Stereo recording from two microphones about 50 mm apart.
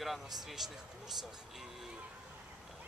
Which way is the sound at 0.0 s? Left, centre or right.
Centre.